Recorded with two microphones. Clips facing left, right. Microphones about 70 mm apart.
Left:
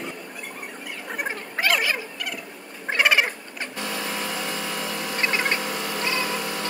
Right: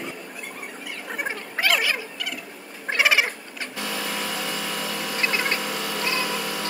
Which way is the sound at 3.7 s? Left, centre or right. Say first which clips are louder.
Even; centre.